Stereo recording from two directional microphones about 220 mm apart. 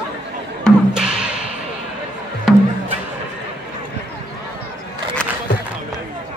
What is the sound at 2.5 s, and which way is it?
Music, centre (ahead or behind).